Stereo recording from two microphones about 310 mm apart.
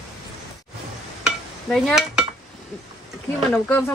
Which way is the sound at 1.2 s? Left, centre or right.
Centre.